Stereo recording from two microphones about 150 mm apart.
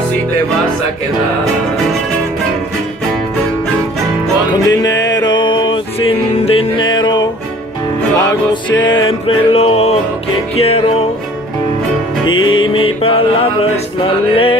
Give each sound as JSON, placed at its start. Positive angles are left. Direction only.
{"t": 4.5, "sound": "music", "side_deg": 25}
{"t": 9.5, "sound": "music", "side_deg": 40}
{"t": 12.4, "sound": "music", "side_deg": 35}